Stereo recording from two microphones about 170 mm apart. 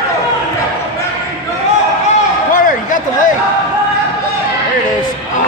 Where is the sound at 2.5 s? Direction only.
50° left (ahead or behind).